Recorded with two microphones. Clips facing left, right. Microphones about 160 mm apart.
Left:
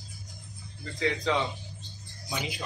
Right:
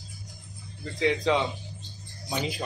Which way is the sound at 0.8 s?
20° right (ahead or behind).